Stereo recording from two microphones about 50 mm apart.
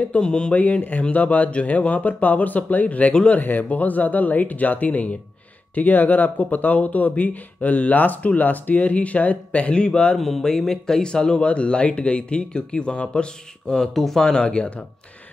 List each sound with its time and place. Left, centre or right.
0.2 s speech: centre
0.6 s speech: left
10.1 s speech: centre; by 13.3 s left
13.7 s speech: centre